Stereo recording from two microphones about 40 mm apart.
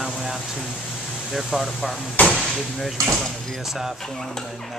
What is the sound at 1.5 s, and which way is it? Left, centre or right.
Speech, centre.